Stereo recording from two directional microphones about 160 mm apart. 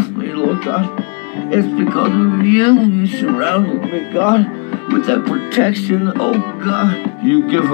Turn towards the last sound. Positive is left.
turn(degrees=35)  # may be behind; listen again after turning